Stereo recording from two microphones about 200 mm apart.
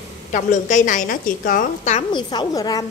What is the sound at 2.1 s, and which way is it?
Speech, 20° left (ahead or behind).